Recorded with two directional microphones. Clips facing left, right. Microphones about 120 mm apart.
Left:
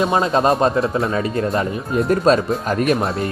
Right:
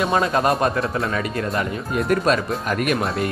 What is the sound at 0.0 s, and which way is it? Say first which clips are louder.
Speech: left 3 dB; 25° left (ahead or behind).